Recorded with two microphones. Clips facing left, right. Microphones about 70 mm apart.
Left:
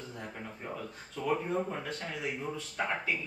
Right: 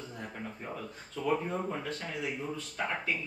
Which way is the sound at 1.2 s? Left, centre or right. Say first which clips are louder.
Even; centre.